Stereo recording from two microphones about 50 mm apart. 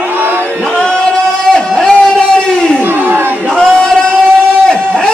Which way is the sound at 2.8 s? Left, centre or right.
Right.